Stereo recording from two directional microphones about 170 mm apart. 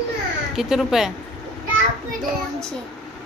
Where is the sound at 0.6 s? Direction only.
5° right (ahead or behind).